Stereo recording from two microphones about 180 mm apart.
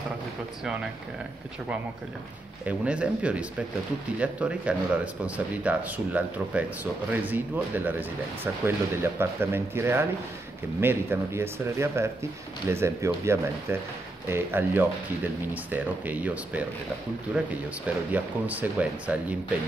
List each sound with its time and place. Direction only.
2.6 s speech: 5° right (ahead or behind)
17.8 s speech: 10° right (ahead or behind)